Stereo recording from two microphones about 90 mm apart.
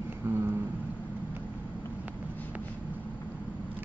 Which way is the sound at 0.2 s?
30° right (ahead or behind).